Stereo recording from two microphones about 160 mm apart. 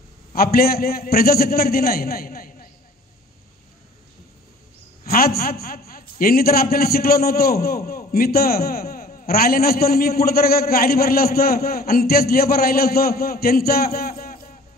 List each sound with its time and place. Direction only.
0.3 s a man's voice: 70° left (ahead or behind)
5.0 s a man's voice: 70° left (ahead or behind)